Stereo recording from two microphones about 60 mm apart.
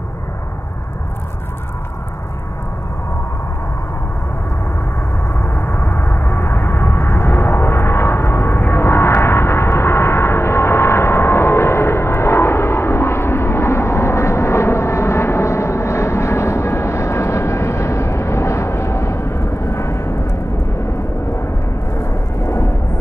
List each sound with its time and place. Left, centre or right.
5.3 s vehicle: left
21.9 s thunder: left